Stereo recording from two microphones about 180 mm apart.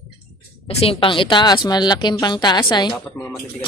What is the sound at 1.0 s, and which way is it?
A woman's voice, 30° left (ahead or behind).